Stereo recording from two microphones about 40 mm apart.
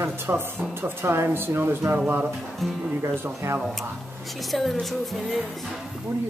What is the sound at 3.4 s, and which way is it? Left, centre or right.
Speech, right.